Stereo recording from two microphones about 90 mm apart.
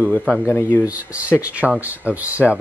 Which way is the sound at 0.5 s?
25° left (ahead or behind).